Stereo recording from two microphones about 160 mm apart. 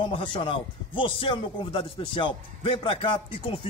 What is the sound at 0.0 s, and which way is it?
A man's voice, 30° left (ahead or behind).